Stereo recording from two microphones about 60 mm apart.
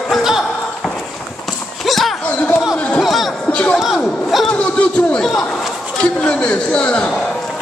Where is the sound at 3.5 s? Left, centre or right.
Centre.